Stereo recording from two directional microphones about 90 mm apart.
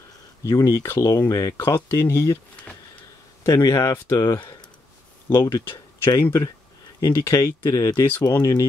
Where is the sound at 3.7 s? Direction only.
30° left (ahead or behind).